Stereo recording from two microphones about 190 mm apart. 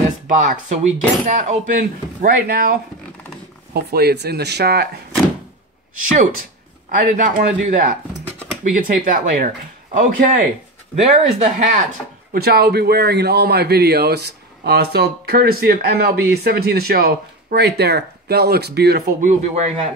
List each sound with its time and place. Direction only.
0.4 s a man's voice: 45° right (ahead or behind); by 4.8 s 60° right (ahead or behind)
7.0 s speech: 45° right (ahead or behind)
11.0 s speech: 35° right (ahead or behind)
12.3 s a man's voice: 55° right (ahead or behind); by 19.7 s 40° right (ahead or behind)